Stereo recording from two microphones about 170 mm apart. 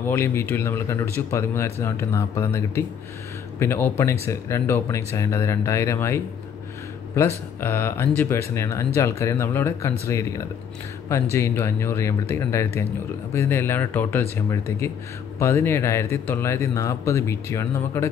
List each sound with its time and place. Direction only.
0.0 s speech: 15° left (ahead or behind)